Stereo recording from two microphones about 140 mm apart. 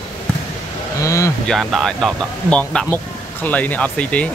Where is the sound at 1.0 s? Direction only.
20° left (ahead or behind).